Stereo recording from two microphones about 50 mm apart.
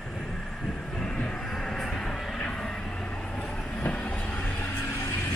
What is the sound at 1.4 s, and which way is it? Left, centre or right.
Vehicle, centre.